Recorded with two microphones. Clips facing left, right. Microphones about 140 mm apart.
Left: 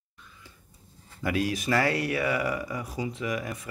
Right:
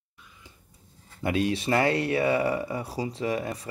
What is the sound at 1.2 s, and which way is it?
Speech, 25° right (ahead or behind).